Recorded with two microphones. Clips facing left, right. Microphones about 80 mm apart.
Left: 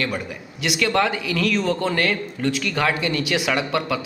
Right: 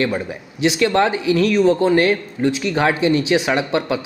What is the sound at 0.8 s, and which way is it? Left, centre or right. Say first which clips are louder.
Speech: right 3 dB; right.